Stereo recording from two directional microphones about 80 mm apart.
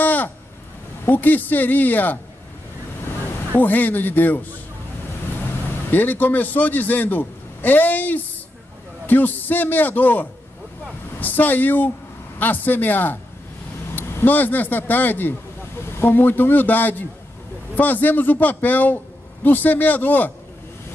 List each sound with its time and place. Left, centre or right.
0.0 s a sound: left
1.0 s a man's voice: left
3.5 s a man's voice: left
5.9 s a man's voice: left